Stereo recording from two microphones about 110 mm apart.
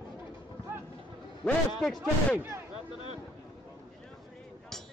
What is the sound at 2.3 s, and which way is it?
Speech, 20° right (ahead or behind).